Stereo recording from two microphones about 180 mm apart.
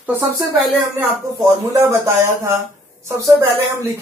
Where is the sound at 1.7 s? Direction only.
15° right (ahead or behind).